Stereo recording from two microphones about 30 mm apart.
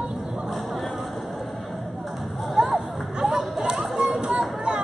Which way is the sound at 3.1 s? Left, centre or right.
Centre.